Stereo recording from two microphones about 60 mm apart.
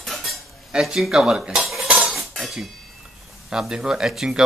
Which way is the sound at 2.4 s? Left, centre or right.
Centre.